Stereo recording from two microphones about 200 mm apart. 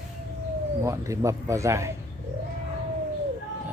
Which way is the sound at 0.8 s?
15° right (ahead or behind).